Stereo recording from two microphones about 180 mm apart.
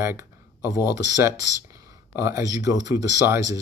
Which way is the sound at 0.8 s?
75° left (ahead or behind).